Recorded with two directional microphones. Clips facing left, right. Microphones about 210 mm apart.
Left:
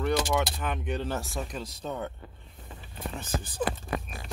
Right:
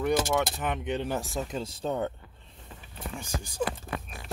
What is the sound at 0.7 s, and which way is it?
Speech, 20° right (ahead or behind).